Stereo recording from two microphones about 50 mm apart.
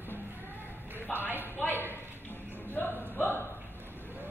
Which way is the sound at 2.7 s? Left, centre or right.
Left.